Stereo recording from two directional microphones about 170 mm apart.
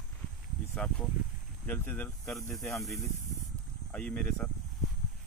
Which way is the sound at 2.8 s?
Centre (ahead or behind).